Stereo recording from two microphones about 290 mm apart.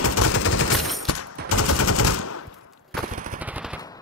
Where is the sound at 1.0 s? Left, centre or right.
Left.